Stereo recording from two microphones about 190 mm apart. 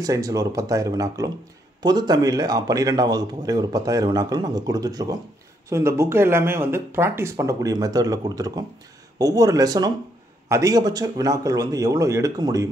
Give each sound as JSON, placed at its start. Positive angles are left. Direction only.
{"t": 0.0, "sound": "a man's voice", "side_deg": -15}